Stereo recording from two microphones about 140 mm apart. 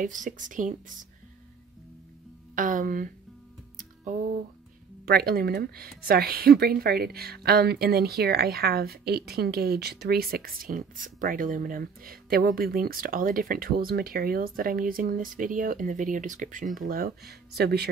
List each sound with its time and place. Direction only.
0.0 s speech: 65° right (ahead or behind)
2.5 s speech: 70° right (ahead or behind)
3.7 s music: 70° right (ahead or behind)
5.0 s speech: 90° right; by 16.6 s 65° right (ahead or behind)
16.7 s speech: 85° right